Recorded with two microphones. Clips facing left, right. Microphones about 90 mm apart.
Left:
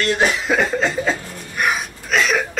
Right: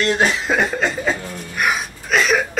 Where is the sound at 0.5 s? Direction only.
5° right (ahead or behind).